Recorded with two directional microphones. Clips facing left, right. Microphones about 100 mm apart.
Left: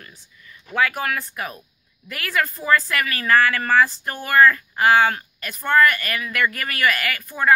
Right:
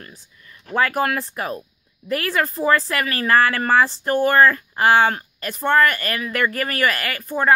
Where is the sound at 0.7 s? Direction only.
40° right (ahead or behind).